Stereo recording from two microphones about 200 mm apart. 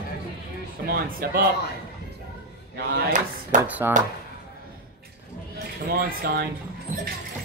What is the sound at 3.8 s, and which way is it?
Speech, 15° right (ahead or behind).